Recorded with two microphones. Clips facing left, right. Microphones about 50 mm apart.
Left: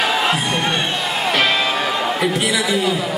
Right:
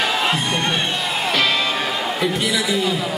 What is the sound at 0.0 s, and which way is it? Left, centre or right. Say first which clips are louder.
Music: left 2 dB; centre.